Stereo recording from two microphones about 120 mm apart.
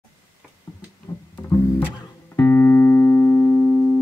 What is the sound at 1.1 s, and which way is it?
Music, 25° left (ahead or behind).